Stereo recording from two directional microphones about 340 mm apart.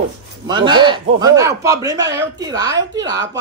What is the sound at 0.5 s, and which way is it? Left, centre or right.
A woman's voice, centre.